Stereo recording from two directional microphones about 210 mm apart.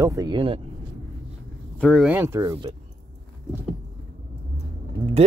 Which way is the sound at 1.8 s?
5° left (ahead or behind).